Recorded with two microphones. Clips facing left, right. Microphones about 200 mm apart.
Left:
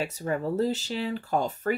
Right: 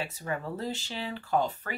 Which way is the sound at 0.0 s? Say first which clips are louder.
Left 6 dB; 40° left (ahead or behind).